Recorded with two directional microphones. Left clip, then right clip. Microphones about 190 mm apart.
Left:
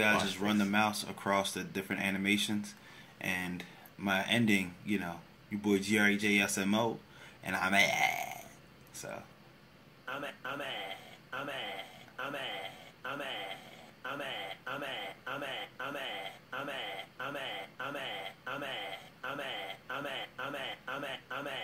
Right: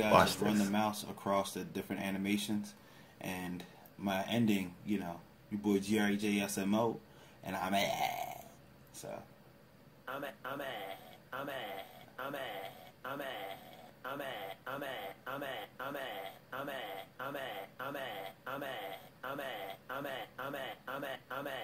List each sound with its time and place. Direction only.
0.0 s speech: 10° right (ahead or behind)
10.0 s a man's voice: 30° right (ahead or behind)